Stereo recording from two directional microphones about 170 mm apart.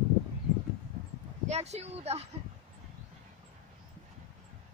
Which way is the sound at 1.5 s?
40° right (ahead or behind).